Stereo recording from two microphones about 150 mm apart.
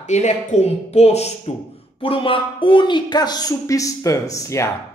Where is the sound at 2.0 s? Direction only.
35° left (ahead or behind).